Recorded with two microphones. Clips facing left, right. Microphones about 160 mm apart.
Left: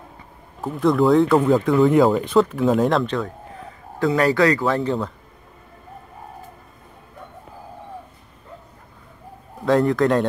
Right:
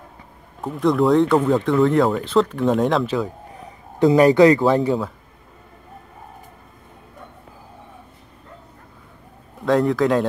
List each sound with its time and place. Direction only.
0.6 s speech: centre (ahead or behind)
4.0 s speech: 20° right (ahead or behind)
9.7 s speech: centre (ahead or behind)